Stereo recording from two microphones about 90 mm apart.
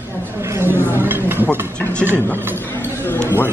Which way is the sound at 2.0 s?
25° right (ahead or behind).